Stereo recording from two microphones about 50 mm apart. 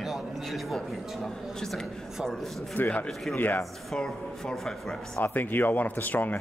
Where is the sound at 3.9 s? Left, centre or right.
Centre.